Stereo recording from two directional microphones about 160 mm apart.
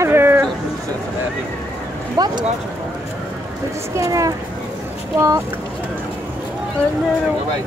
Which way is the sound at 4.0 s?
20° right (ahead or behind).